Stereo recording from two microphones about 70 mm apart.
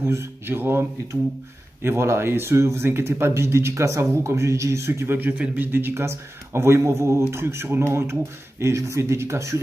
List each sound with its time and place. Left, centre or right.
0.0 s speech: right